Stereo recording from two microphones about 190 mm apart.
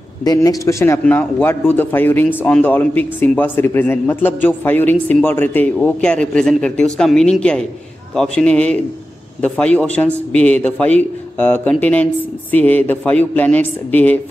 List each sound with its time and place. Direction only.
0.2 s a man's voice: 20° left (ahead or behind)